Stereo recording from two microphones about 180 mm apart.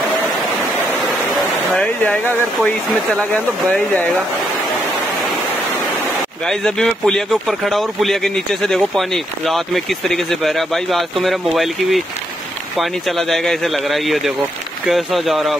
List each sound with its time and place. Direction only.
1.0 s a sound: centre (ahead or behind)
6.4 s speech: 5° left (ahead or behind)
13.3 s speech: centre (ahead or behind)